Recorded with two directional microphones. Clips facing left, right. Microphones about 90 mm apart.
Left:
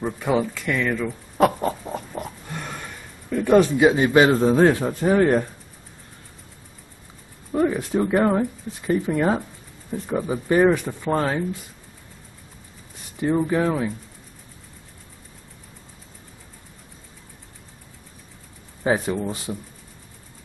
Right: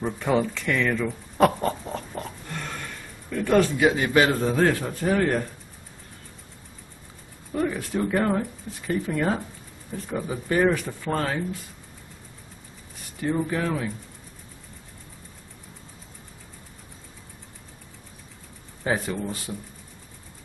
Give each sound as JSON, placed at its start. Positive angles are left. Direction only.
{"t": 0.0, "sound": "speech", "side_deg": 5}
{"t": 7.5, "sound": "speech", "side_deg": 20}
{"t": 13.2, "sound": "speech", "side_deg": 20}
{"t": 18.9, "sound": "speech", "side_deg": 20}